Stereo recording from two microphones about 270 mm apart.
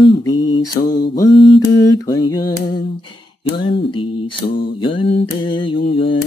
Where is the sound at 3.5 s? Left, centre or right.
Centre.